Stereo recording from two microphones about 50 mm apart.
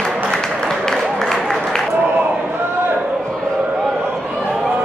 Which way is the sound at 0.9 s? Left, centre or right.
Centre.